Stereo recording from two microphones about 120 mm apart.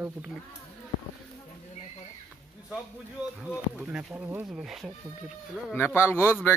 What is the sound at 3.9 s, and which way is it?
Speech, 10° right (ahead or behind).